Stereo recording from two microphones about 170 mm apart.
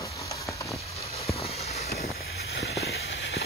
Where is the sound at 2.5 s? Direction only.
70° left (ahead or behind).